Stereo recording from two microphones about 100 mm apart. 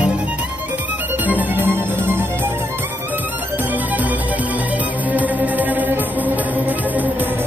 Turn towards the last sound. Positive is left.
turn(degrees=-15)  # may be behind; listen again after turning